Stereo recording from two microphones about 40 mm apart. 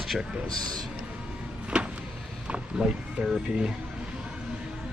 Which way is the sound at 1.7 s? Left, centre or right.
Right.